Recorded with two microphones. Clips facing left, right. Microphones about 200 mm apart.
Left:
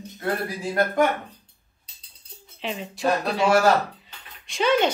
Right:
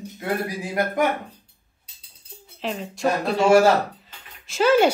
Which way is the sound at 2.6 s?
Centre (ahead or behind).